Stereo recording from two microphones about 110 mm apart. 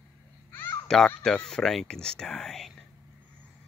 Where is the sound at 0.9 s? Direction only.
5° left (ahead or behind).